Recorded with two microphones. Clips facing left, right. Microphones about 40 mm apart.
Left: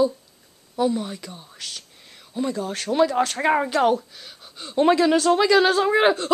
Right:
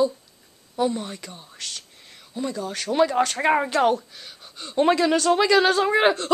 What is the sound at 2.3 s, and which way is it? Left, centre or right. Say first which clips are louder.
Speech: left 3 dB; centre.